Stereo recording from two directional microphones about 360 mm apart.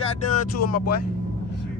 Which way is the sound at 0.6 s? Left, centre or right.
Left.